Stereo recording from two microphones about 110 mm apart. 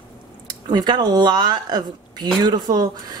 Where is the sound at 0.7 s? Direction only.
40° right (ahead or behind).